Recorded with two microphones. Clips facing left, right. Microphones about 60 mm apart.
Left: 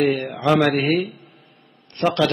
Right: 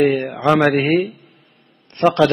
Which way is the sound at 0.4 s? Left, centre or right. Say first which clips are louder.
Right 3 dB; right.